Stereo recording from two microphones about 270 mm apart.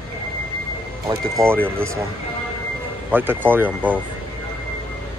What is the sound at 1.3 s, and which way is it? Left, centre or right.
Speech, centre.